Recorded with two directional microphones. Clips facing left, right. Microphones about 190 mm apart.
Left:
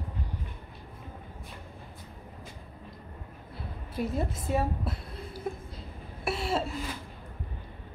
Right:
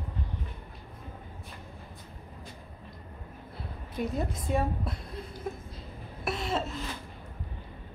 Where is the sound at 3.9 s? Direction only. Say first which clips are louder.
Left 1 dB; 5° left (ahead or behind).